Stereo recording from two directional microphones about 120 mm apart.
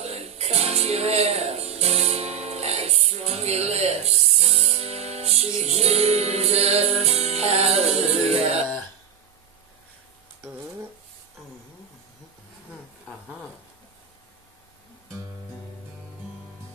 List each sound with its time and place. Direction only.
0.0 s music: 65° right (ahead or behind)